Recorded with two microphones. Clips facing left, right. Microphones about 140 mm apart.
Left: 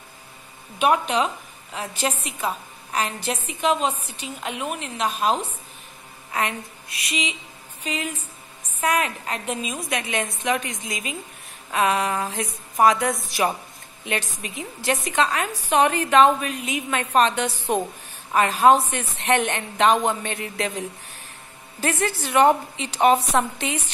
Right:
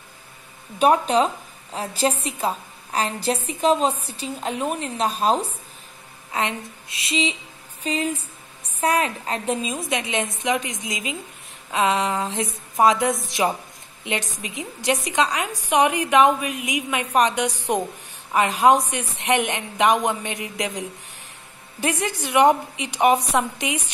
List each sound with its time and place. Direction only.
0.7 s a woman's voice: 35° right (ahead or behind); by 23.9 s 10° right (ahead or behind)